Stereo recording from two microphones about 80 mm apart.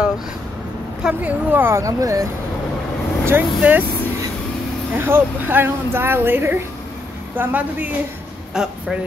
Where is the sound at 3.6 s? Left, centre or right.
Centre.